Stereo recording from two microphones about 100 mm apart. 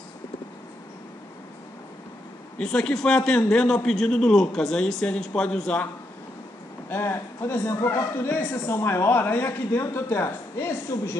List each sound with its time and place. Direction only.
2.6 s a man's voice: 10° left (ahead or behind)
6.9 s a man's voice: 25° left (ahead or behind)